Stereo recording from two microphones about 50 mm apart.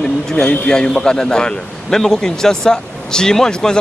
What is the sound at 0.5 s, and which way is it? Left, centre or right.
A man's voice, centre.